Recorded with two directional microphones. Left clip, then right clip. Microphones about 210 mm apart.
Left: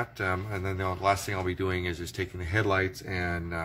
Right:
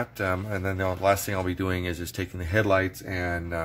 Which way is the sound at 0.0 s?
45° right (ahead or behind).